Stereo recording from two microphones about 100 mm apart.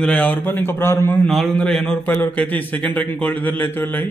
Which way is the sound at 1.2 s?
Centre (ahead or behind).